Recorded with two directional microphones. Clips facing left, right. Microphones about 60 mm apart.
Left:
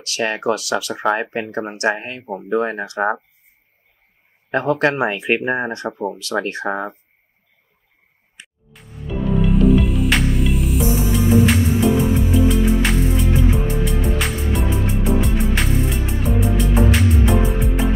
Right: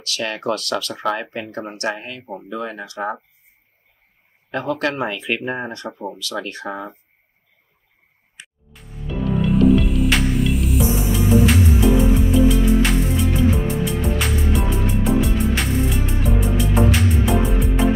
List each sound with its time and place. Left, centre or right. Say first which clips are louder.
0.0 s speech: left 4 dB; left
0.4 s speech: left 3 dB; centre
0.9 s speech: left 4 dB; left
2.2 s speech: left 4 dB; centre
2.5 s speech: left 9 dB; left
4.5 s speech: left 5 dB; left
8.7 s music: left 1 dB; centre